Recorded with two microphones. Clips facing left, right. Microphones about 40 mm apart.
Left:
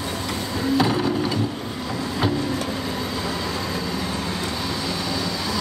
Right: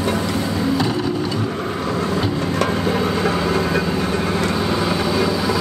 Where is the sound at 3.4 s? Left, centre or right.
Right.